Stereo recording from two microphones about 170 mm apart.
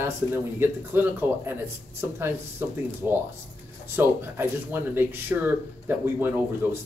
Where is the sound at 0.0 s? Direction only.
10° right (ahead or behind).